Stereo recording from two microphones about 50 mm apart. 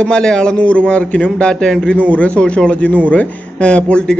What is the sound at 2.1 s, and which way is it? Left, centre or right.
Speech, left.